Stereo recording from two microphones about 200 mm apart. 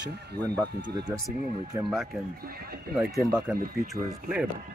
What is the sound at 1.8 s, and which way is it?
Speech, centre (ahead or behind).